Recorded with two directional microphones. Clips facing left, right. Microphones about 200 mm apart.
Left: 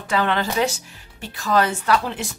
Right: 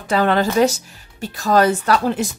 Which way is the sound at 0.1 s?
40° right (ahead or behind).